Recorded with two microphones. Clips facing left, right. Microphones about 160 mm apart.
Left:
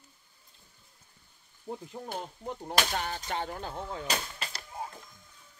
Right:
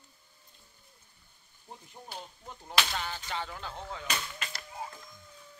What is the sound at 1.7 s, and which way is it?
Speech, 65° left (ahead or behind).